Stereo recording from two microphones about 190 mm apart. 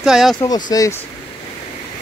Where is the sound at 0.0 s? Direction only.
Centre (ahead or behind).